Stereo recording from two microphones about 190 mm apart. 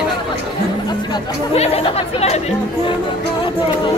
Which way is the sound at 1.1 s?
30° left (ahead or behind).